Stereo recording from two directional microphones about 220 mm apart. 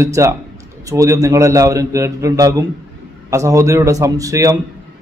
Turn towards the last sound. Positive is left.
turn(degrees=-15)  # may be behind; listen again after turning